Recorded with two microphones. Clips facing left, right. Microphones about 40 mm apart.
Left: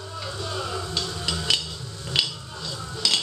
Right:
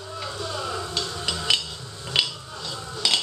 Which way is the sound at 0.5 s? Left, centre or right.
Centre.